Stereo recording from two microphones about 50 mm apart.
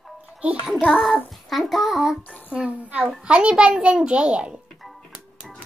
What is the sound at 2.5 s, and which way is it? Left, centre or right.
A child's voice, right.